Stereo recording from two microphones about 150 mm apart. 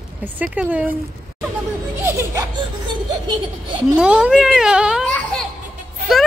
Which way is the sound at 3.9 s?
5° right (ahead or behind).